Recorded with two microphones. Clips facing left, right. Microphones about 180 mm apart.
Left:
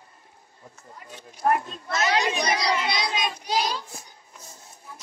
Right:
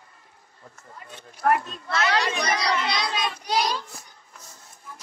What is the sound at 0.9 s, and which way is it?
Run, 10° left (ahead or behind).